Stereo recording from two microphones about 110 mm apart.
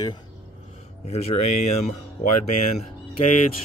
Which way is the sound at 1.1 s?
70° left (ahead or behind).